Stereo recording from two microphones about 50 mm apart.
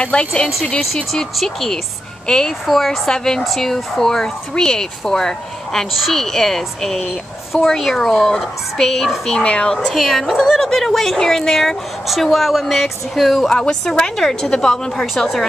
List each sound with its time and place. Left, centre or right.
0.0 s a woman's voice: left
1.1 s a woman's voice: centre
9.4 s speech: centre
9.9 s a woman's voice: centre